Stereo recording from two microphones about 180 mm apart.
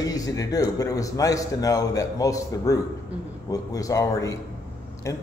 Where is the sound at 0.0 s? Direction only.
20° left (ahead or behind).